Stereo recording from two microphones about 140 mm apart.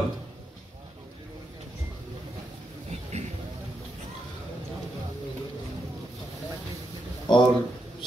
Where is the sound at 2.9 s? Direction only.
50° right (ahead or behind).